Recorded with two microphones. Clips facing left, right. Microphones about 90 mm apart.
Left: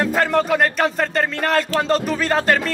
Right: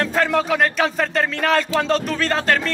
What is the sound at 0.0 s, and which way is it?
Speech, 5° left (ahead or behind).